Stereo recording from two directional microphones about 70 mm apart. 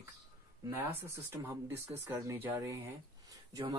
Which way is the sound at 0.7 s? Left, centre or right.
Right.